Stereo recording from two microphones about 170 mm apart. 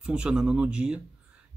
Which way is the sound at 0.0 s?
5° right (ahead or behind).